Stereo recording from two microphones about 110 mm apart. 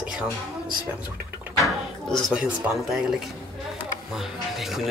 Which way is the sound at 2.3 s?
Centre (ahead or behind).